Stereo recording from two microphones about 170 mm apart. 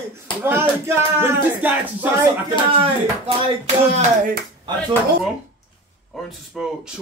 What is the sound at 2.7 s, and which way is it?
Speech, 30° right (ahead or behind).